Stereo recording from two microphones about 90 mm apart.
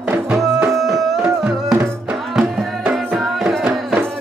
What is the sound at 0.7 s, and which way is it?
Music, centre (ahead or behind).